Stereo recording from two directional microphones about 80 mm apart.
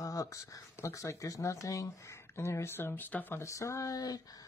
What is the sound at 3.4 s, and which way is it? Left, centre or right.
Speech, left.